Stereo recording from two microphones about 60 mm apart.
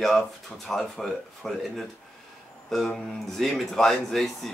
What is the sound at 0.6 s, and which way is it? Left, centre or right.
Speech, centre.